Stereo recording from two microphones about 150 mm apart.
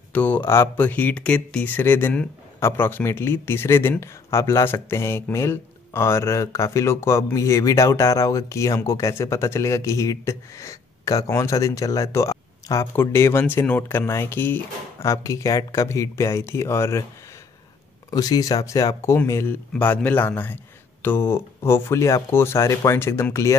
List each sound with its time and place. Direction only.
0.1 s speech: 10° left (ahead or behind)
18.1 s speech: 25° left (ahead or behind)